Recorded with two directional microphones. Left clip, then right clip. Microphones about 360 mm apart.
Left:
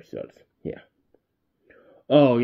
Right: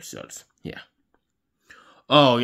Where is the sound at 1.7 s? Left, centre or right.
Centre.